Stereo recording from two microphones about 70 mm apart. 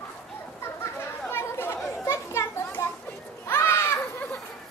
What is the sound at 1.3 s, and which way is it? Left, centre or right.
Chatter, left.